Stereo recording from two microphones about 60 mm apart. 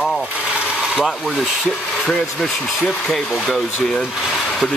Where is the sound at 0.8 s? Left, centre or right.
Centre.